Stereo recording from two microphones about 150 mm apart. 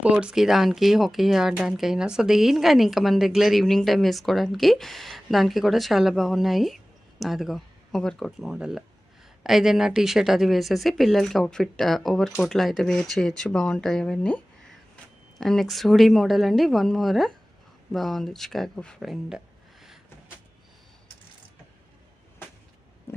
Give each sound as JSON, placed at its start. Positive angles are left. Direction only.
{"t": 0.0, "sound": "speech", "side_deg": -5}
{"t": 23.1, "sound": "stomach rumble", "side_deg": 15}